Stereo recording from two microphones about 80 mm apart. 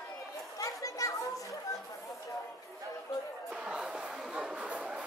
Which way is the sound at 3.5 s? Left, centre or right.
Centre.